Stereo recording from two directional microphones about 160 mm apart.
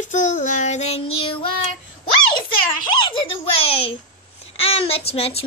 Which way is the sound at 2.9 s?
30° left (ahead or behind).